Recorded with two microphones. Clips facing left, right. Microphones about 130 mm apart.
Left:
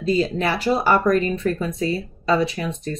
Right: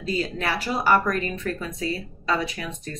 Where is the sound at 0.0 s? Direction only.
25° left (ahead or behind).